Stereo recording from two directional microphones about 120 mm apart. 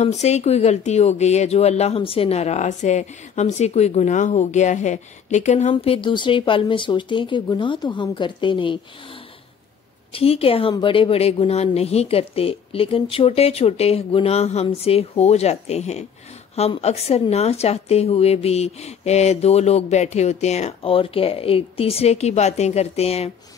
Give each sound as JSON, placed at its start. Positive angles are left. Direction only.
{"t": 0.0, "sound": "speech", "side_deg": 70}
{"t": 5.7, "sound": "speech", "side_deg": 50}